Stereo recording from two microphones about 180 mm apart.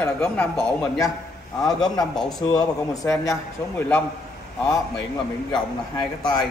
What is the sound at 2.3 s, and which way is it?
A man's voice, 20° left (ahead or behind).